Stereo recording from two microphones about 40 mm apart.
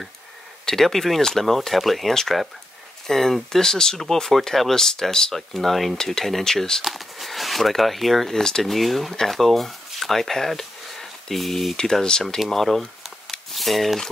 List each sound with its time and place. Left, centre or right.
0.7 s speech: centre
6.8 s speech: centre
8.7 s speech: centre
11.7 s speech: centre
12.4 s speech: centre
13.3 s a sound: centre